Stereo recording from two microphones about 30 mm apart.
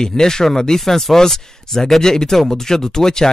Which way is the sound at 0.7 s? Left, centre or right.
Centre.